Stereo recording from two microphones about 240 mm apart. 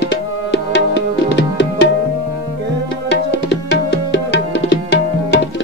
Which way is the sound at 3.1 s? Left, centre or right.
Left.